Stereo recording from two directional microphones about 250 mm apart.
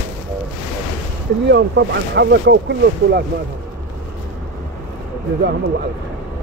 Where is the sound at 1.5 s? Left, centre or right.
Right.